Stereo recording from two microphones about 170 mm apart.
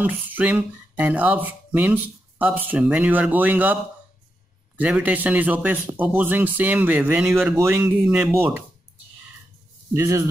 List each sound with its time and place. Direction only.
0.0 s a man's voice: 10° right (ahead or behind)
4.7 s a man's voice: 10° right (ahead or behind)
9.9 s a man's voice: 15° right (ahead or behind)